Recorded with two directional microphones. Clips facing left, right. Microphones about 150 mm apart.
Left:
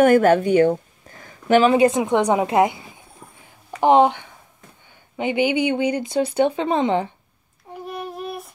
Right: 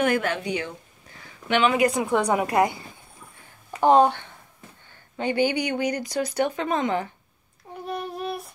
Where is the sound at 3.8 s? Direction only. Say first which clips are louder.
Left 2 dB; 15° left (ahead or behind).